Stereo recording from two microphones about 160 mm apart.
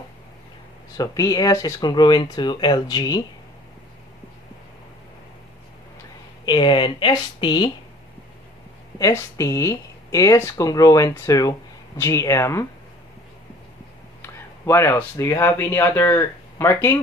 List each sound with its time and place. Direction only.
0.9 s speech: 25° left (ahead or behind)
6.4 s speech: 30° left (ahead or behind)
8.9 s speech: 20° left (ahead or behind)
14.2 s speech: 15° left (ahead or behind)